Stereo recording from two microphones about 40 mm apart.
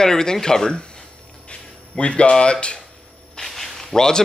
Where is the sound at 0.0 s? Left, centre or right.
Centre.